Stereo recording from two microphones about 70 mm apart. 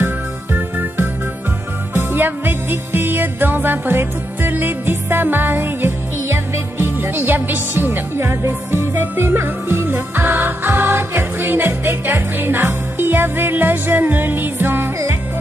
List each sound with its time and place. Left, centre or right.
0.0 s music: right